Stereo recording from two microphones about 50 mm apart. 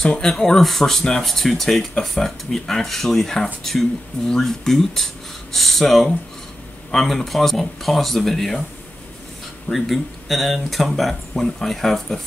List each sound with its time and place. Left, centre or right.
0.0 s speech: centre
9.7 s speech: centre